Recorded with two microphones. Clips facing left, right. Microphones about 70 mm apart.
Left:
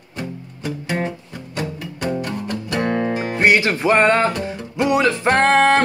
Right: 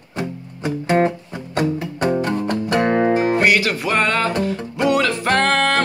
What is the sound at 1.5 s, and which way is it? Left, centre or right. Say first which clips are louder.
Music: right 7 dB; right.